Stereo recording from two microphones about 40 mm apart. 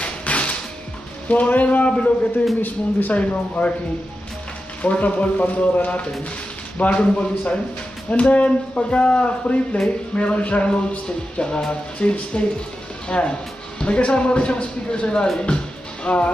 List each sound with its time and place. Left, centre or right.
0.0 s music: left
1.3 s speech: left
1.9 s speech: left
2.6 s speech: left
3.2 s speech: left
4.8 s speech: left
13.7 s speech: left
15.4 s music: left